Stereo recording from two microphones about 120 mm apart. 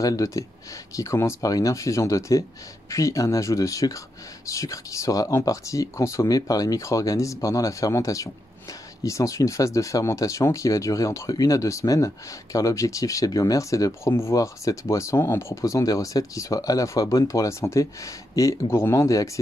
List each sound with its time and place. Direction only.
0.0 s speech: 30° left (ahead or behind)